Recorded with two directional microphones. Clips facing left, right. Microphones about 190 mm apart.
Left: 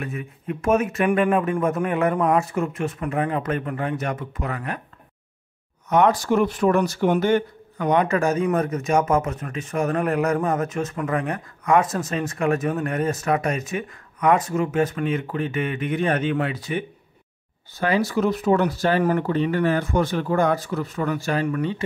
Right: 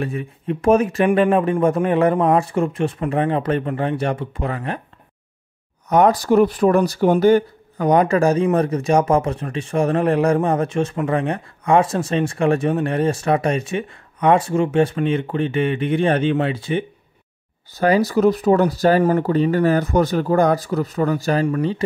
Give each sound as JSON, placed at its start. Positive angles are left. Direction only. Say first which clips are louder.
{"t": 0.0, "sound": "speech", "louder": "right 6 dB", "side_deg": -30}
{"t": 5.9, "sound": "speech", "louder": "right 3 dB", "side_deg": -35}
{"t": 17.7, "sound": "speech", "louder": "right 5 dB", "side_deg": -40}